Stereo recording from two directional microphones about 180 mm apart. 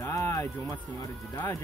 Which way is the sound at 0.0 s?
15° left (ahead or behind).